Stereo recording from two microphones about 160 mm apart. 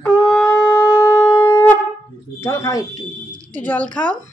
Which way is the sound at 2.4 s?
15° left (ahead or behind).